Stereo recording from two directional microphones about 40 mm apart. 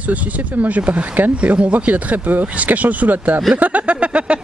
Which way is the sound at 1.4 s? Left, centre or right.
Right.